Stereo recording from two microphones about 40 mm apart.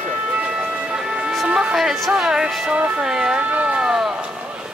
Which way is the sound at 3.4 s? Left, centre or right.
Right.